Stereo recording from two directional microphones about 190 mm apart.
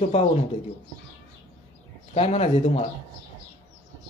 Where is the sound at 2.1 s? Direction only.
35° left (ahead or behind).